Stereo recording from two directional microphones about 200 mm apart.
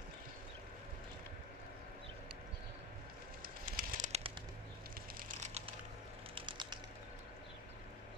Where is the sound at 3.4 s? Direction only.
45° right (ahead or behind).